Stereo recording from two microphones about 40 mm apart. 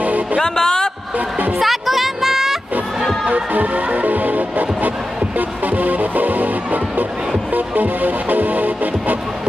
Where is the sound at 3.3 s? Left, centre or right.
Right.